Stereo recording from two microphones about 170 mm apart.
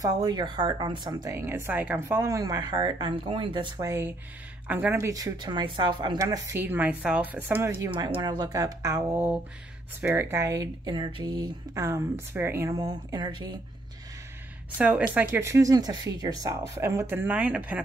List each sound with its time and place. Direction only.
0.0 s speech: 25° right (ahead or behind)
14.8 s speech: 10° right (ahead or behind)